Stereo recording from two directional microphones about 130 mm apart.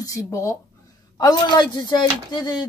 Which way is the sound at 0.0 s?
25° left (ahead or behind).